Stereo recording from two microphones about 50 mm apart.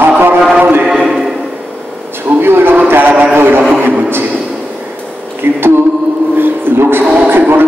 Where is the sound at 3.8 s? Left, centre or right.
Right.